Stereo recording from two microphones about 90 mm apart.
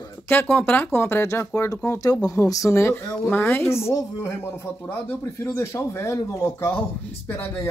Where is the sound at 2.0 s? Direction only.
40° left (ahead or behind).